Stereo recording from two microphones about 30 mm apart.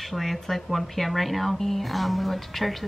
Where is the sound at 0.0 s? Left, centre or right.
Centre.